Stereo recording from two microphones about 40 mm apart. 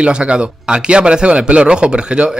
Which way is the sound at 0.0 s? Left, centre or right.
Right.